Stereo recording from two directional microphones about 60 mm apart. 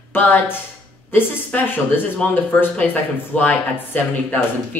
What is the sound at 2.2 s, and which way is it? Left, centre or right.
Speech, centre.